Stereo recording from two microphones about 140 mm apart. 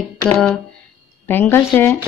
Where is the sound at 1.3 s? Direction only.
15° left (ahead or behind).